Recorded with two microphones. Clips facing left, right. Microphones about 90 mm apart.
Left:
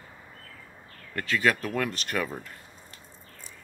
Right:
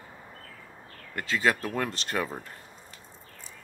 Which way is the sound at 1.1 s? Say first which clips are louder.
Left 1 dB; 20° right (ahead or behind).